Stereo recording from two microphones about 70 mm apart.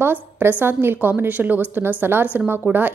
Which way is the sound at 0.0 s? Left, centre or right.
Right.